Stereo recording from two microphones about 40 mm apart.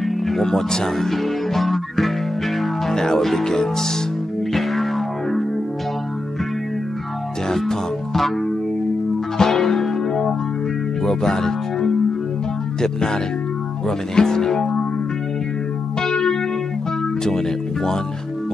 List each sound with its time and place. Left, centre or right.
0.3 s music: centre
7.4 s speech: centre
9.4 s music: centre
11.1 s speech: centre
16.0 s music: centre